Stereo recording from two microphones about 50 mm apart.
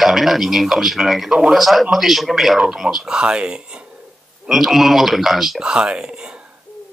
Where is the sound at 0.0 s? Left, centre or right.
Centre.